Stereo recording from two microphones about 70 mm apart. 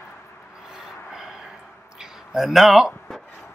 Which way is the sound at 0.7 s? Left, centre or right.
Centre.